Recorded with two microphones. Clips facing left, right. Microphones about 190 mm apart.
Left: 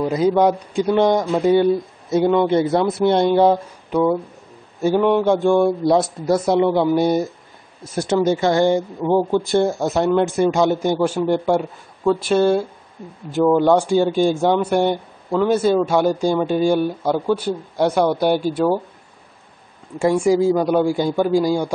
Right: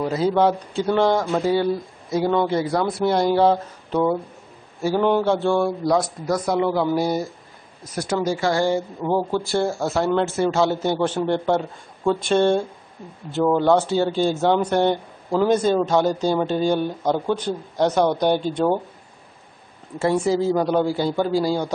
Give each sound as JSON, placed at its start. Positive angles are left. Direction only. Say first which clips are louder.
{"t": 0.0, "sound": "speech", "louder": "left 3 dB", "side_deg": 15}
{"t": 4.9, "sound": "mantra", "louder": "left 2 dB", "side_deg": -5}
{"t": 5.2, "sound": "a man's voice", "louder": "left 4 dB", "side_deg": 15}
{"t": 20.0, "sound": "a man's voice", "louder": "left 4 dB", "side_deg": 10}